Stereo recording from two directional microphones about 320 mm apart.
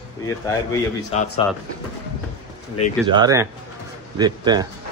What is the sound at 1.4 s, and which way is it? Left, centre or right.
Speech, centre.